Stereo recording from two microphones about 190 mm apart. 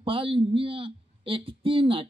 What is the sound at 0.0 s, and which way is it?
A man's voice, 30° right (ahead or behind).